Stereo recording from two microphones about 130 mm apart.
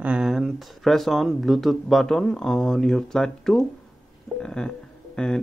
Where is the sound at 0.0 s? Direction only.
5° right (ahead or behind).